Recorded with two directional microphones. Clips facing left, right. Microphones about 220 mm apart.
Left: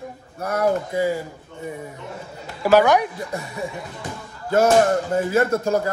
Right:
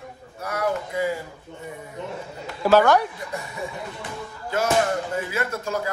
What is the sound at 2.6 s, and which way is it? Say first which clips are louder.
Speech: left 1 dB; 15° left (ahead or behind).